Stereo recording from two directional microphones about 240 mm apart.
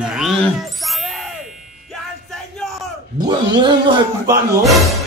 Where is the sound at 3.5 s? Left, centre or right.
Centre.